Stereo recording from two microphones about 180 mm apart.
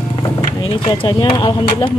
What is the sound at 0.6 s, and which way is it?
Speech, 25° left (ahead or behind).